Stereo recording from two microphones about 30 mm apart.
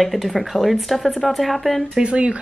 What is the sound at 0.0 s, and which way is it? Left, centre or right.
A woman's voice, centre.